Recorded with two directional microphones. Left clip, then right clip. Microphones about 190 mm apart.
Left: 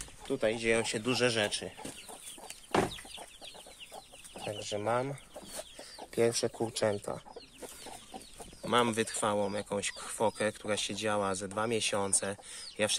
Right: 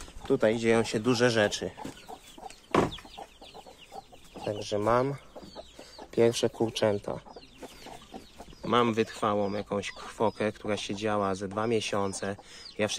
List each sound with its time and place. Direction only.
0.3 s speech: 25° right (ahead or behind)
4.6 s speech: 10° right (ahead or behind)
6.1 s speech: 5° left (ahead or behind)
8.6 s speech: 5° left (ahead or behind)